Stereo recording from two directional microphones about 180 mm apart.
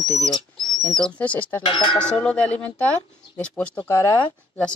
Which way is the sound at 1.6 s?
30° left (ahead or behind).